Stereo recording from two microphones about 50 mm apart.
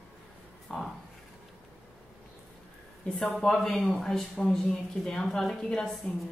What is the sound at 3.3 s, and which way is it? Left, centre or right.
Speech, centre.